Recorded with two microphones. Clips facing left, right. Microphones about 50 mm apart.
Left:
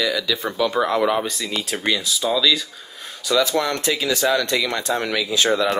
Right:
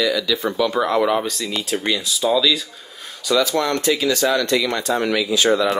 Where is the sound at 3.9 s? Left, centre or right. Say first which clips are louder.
Right 2 dB; centre.